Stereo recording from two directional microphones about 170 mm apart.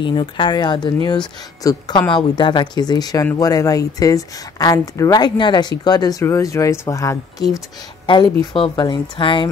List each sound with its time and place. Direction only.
0.0 s speech: 30° left (ahead or behind)